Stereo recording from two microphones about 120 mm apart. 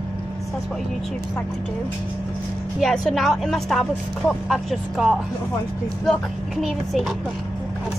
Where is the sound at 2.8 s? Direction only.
Centre (ahead or behind).